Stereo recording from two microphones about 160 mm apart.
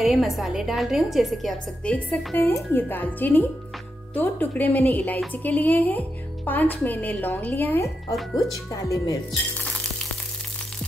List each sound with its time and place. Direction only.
0.0 s a woman's voice: centre (ahead or behind)
2.0 s speech: 10° left (ahead or behind)